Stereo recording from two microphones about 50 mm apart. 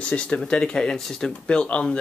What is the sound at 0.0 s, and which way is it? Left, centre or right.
Speech, left.